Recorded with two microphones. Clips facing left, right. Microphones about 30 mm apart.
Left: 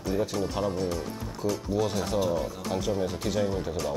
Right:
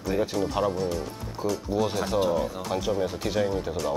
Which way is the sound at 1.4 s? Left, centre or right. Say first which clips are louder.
Right 1 dB; centre.